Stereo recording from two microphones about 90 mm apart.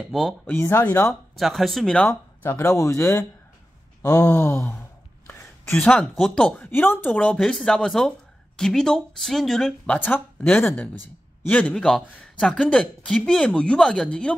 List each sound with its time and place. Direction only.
0.1 s speech: centre (ahead or behind)
0.5 s speech: 25° left (ahead or behind)
1.3 s speech: centre (ahead or behind)
2.0 s speech: 25° left (ahead or behind)
5.7 s speech: 10° left (ahead or behind)
6.5 s speech: 20° left (ahead or behind); by 9.9 s 5° left (ahead or behind)
9.9 s a man's voice: 20° left (ahead or behind)